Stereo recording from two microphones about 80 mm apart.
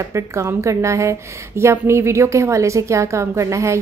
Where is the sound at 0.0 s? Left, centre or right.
Right.